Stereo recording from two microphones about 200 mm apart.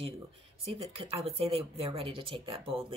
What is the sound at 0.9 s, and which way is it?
Speech, 30° right (ahead or behind).